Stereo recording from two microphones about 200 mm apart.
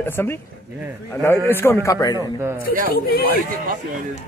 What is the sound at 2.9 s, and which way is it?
Speech, 50° left (ahead or behind).